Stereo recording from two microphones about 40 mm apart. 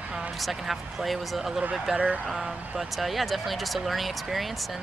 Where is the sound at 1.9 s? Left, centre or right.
Right.